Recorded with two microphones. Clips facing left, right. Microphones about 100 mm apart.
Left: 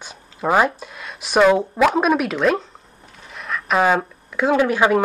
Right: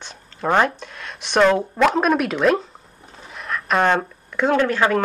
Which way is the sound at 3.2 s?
Centre (ahead or behind).